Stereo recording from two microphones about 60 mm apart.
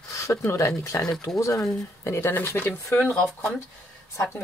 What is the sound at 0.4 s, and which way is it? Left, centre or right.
Speech, left.